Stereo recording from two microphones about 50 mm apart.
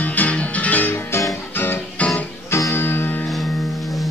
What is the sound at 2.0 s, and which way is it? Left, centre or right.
Music, left.